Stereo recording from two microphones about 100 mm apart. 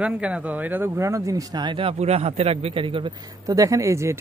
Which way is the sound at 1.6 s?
60° right (ahead or behind).